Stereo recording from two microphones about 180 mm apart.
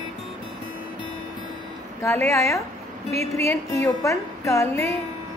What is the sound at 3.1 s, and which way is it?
Speech, 35° right (ahead or behind).